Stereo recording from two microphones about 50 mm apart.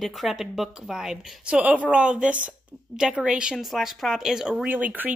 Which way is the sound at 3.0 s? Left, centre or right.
Centre.